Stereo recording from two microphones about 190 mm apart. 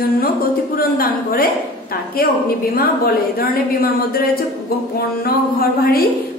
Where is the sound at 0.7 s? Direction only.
50° left (ahead or behind).